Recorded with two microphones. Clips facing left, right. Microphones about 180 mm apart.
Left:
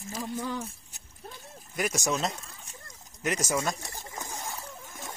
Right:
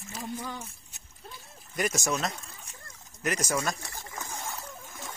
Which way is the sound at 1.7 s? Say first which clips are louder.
Right 1 dB; 5° left (ahead or behind).